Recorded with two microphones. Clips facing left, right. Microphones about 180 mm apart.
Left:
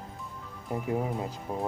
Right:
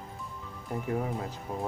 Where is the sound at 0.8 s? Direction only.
20° left (ahead or behind).